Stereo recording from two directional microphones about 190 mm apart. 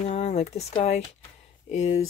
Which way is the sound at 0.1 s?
35° left (ahead or behind).